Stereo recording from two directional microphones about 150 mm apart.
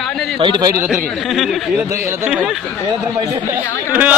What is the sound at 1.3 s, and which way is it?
Speech, centre (ahead or behind).